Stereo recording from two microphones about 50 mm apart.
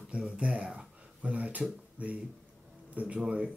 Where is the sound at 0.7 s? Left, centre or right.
Right.